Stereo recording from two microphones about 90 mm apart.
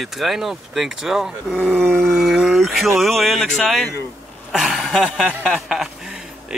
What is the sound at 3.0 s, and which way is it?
Speech, centre (ahead or behind).